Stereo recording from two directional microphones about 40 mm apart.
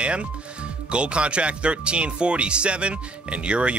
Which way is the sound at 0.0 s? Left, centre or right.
Right.